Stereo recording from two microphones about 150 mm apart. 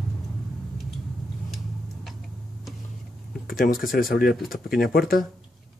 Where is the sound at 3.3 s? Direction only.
70° left (ahead or behind).